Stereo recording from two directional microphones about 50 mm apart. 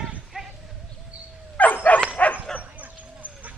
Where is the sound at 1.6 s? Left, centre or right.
Left.